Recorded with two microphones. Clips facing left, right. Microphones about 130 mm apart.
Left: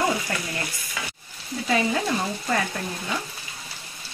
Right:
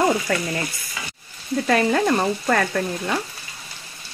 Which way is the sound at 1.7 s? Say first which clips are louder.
Right 5 dB; 60° right (ahead or behind).